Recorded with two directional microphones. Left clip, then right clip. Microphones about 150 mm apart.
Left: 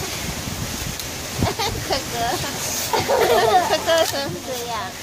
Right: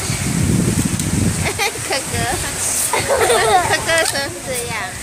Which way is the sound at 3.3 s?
Centre (ahead or behind).